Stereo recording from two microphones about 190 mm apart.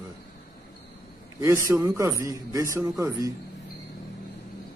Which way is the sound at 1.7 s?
15° right (ahead or behind).